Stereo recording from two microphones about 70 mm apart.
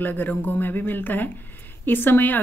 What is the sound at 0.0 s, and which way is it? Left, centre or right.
Speech, left.